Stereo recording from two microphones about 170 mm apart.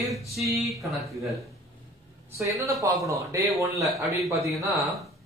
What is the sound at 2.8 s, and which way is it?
A man's voice, 20° right (ahead or behind).